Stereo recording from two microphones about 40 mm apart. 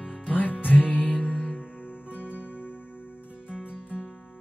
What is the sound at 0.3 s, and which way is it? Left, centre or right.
Music, left.